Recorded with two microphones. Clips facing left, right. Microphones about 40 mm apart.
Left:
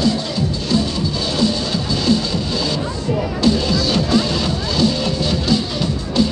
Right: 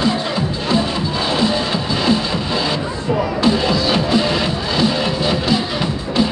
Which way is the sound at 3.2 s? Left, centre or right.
Centre.